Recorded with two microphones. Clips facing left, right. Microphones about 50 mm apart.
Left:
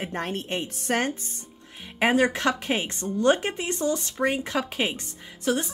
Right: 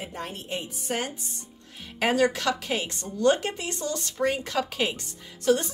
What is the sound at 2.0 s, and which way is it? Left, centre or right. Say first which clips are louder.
Speech: left 2 dB; left.